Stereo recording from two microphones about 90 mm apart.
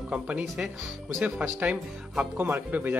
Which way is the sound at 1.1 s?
15° right (ahead or behind).